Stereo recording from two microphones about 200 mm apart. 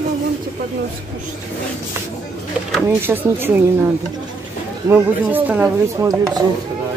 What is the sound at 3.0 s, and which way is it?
Speech, 10° right (ahead or behind).